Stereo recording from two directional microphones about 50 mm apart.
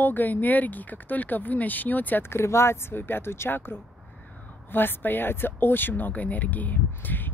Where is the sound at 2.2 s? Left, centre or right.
Left.